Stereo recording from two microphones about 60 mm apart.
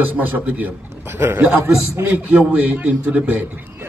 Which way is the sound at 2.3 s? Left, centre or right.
Right.